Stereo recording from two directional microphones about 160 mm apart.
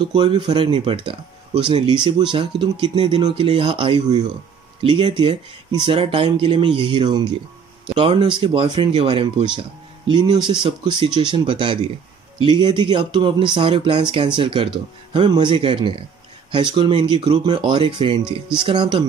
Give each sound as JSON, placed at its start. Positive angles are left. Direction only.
{"t": 0.0, "sound": "speech", "side_deg": -30}